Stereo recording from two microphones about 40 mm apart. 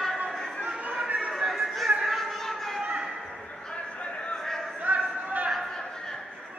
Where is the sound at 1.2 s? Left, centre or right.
Centre.